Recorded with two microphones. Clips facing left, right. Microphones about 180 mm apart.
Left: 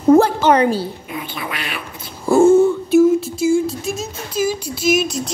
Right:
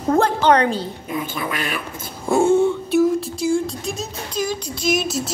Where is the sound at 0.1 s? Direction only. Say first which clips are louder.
Left 4 dB; 10° left (ahead or behind).